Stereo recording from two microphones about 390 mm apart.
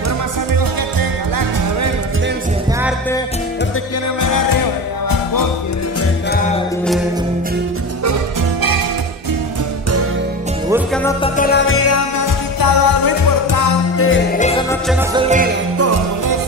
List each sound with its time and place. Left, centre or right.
4.2 s music: left
8.0 s music: right
10.7 s music: centre
11.2 s music: centre
11.6 s music: left
12.5 s music: left
13.9 s music: left
14.4 s music: centre
14.9 s music: centre
15.2 s music: centre
15.8 s music: right